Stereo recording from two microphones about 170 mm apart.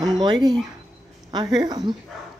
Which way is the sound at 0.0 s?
25° right (ahead or behind).